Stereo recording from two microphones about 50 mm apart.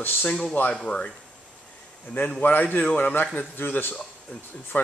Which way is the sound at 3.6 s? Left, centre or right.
Left.